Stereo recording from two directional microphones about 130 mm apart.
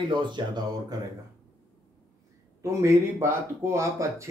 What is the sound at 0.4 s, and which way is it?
Speech, 40° right (ahead or behind).